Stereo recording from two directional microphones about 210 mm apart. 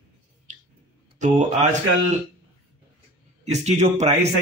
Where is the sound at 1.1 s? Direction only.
35° right (ahead or behind).